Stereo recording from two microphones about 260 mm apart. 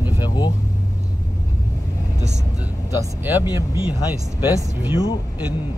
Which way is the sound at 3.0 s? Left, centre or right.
Centre.